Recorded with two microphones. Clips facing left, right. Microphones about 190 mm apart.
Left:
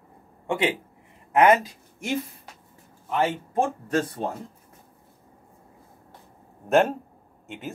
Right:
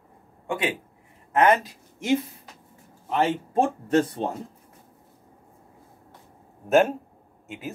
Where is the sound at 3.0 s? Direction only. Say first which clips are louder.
Right 1 dB; 25° right (ahead or behind).